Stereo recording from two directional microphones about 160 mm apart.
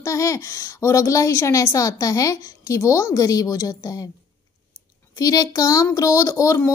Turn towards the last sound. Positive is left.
turn(degrees=20)  # may be behind; listen again after turning